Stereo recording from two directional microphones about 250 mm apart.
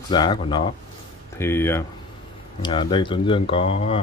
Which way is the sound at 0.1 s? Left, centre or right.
Centre.